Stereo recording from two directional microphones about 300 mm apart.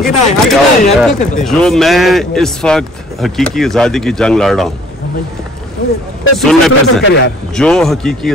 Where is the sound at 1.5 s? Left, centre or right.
Centre.